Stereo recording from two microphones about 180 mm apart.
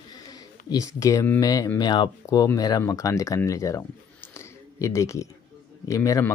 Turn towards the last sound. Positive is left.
turn(degrees=15)  # may be behind; listen again after turning